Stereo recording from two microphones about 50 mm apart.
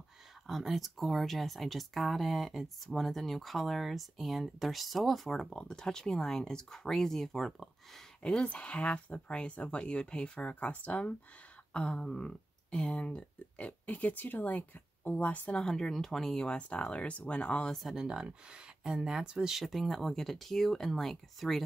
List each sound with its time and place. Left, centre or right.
0.5 s speech: centre
8.2 s speech: centre
15.6 s speech: centre; by 17.6 s left
17.8 s speech: centre
19.6 s speech: centre